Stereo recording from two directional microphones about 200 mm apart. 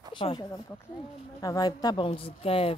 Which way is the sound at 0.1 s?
25° left (ahead or behind).